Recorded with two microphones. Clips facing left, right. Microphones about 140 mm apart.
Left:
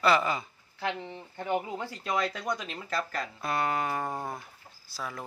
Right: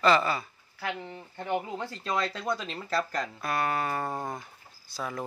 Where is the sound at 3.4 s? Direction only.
20° left (ahead or behind).